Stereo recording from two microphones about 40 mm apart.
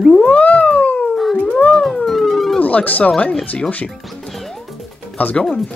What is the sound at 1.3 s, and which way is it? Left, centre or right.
Music, left.